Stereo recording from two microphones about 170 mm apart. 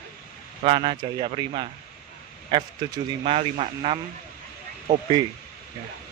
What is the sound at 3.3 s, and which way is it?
Speech, 40° right (ahead or behind).